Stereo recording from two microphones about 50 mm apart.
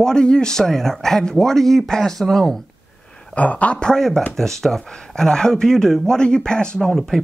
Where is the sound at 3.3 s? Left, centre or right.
Left.